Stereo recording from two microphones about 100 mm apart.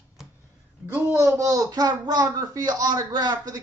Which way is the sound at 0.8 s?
20° right (ahead or behind).